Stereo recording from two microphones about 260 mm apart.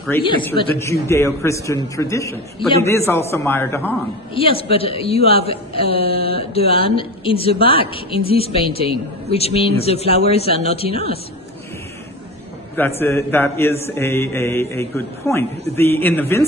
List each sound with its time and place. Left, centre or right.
0.1 s mantra: centre
4.4 s a woman's voice: left
12.7 s mantra: centre